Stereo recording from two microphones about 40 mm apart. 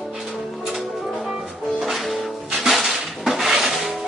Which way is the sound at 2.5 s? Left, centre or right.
Centre.